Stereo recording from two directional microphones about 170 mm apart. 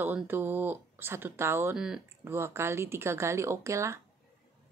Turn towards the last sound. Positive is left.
turn(degrees=-15)  # may be behind; listen again after turning